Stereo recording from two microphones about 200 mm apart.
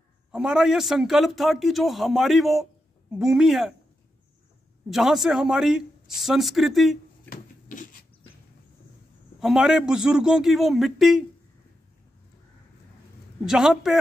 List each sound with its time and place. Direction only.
0.3 s a man's voice: 5° right (ahead or behind)
4.8 s a man's voice: centre (ahead or behind)
7.2 s rub: 40° left (ahead or behind)
9.4 s a man's voice: centre (ahead or behind)
13.5 s a man's voice: centre (ahead or behind)